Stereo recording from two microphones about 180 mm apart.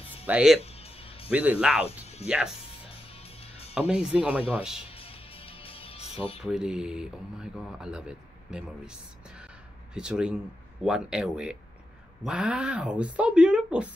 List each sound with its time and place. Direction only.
0.3 s speech: 5° right (ahead or behind)
0.6 s music: 35° left (ahead or behind)
1.3 s speech: 10° right (ahead or behind)
2.9 s music: 30° left (ahead or behind)
3.9 s speech: 5° right (ahead or behind)
4.9 s music: 30° left (ahead or behind)
6.4 s speech: 5° right (ahead or behind)